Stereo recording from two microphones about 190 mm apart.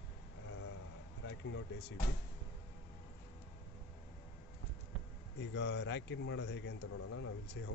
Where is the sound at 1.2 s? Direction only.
75° left (ahead or behind).